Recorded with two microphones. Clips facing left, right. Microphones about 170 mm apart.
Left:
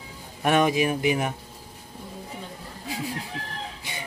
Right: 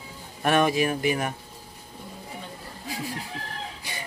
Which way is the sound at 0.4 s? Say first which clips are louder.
Left 1 dB; 15° left (ahead or behind).